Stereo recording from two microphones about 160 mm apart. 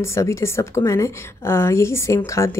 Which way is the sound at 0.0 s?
15° left (ahead or behind).